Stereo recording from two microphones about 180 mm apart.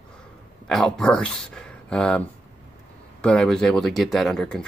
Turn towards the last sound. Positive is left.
turn(degrees=5)  # may be behind; listen again after turning